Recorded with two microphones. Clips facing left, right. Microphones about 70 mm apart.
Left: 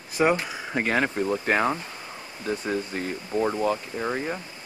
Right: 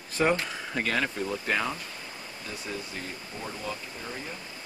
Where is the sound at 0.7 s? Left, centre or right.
Left.